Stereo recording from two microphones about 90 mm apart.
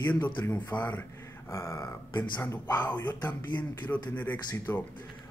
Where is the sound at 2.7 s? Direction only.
20° left (ahead or behind).